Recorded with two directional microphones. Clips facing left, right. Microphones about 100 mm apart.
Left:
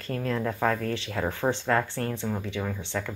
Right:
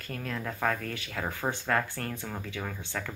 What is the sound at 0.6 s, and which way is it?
Speech, 30° left (ahead or behind).